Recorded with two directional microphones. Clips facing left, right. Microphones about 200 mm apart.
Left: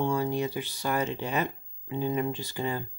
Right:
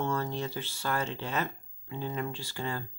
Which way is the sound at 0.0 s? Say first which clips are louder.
Left 5 dB; 15° left (ahead or behind).